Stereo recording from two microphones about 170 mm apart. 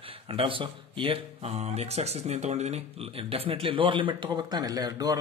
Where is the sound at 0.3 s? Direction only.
30° right (ahead or behind).